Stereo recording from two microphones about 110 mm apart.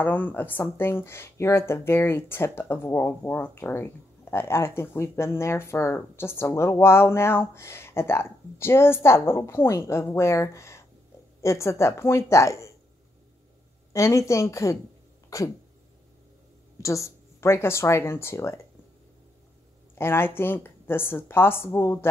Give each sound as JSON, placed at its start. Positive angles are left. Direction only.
{"t": 0.0, "sound": "speech", "side_deg": 15}
{"t": 13.9, "sound": "speech", "side_deg": 25}
{"t": 16.8, "sound": "speech", "side_deg": 25}
{"t": 20.0, "sound": "speech", "side_deg": 20}